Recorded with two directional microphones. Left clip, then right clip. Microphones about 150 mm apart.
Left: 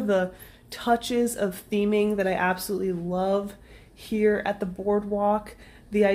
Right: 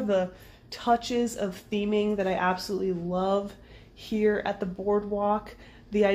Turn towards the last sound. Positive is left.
turn(degrees=15)  # may be behind; listen again after turning